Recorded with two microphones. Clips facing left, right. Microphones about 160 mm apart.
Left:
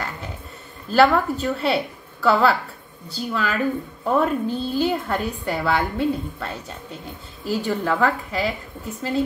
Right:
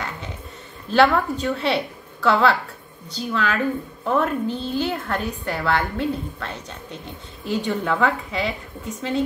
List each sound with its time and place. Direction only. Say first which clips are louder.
0.8 s a woman's voice: left 1 dB; centre (ahead or behind)